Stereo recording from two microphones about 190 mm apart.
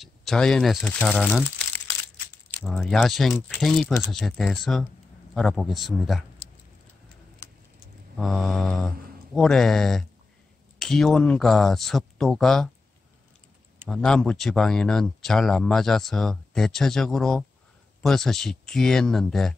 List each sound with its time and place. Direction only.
0.0 s speech: centre (ahead or behind)
7.4 s vehicle: 15° left (ahead or behind)
8.2 s speech: centre (ahead or behind)
13.8 s speech: 5° left (ahead or behind)